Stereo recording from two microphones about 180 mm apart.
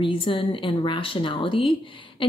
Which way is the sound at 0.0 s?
30° left (ahead or behind).